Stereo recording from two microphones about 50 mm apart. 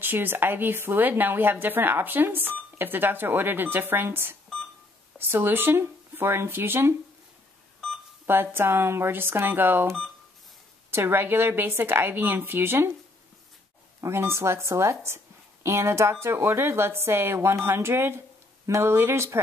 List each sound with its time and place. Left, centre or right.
0.0 s a woman's voice: right
8.3 s a woman's voice: right
10.9 s a woman's voice: right
14.0 s speech: right
15.6 s a woman's voice: right